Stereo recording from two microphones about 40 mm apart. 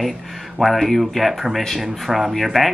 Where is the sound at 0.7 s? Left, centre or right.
Centre.